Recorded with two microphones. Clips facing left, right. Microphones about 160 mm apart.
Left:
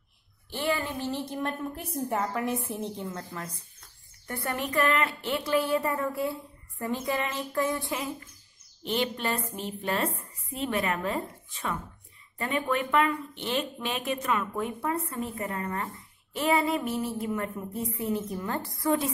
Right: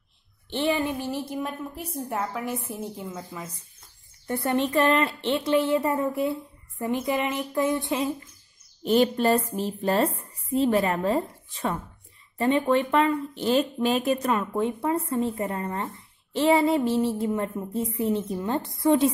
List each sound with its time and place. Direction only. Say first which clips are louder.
0.5 s a woman's voice: right 5 dB; 25° right (ahead or behind); by 3.5 s 5° right (ahead or behind)
4.3 s speech: right 7 dB; 25° right (ahead or behind)
8.8 s a woman's voice: right 9 dB; 40° right (ahead or behind); by 19.1 s 25° right (ahead or behind)